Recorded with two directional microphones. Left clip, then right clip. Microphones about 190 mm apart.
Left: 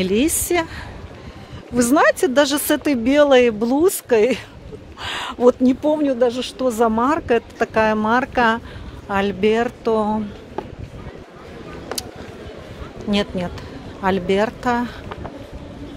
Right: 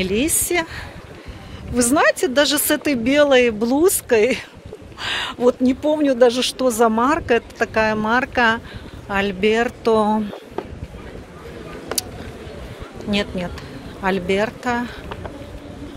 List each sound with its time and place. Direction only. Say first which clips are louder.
0.0 s a woman's voice: left 1 dB; 20° left (ahead or behind)
5.9 s speech: right 3 dB; 5° right (ahead or behind)
6.7 s speech: even; 5° left (ahead or behind)
9.8 s speech: right 4 dB; centre (ahead or behind)
13.1 s speech: left 1 dB; 20° left (ahead or behind)